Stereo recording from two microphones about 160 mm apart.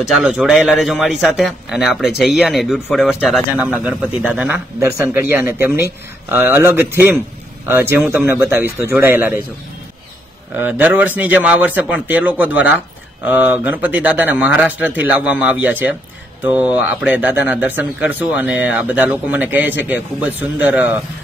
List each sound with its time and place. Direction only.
0.1 s a man's voice: 5° right (ahead or behind)
10.5 s a man's voice: 10° right (ahead or behind)